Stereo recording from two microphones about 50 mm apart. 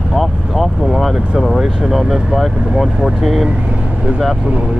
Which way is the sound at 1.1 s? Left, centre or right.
Centre.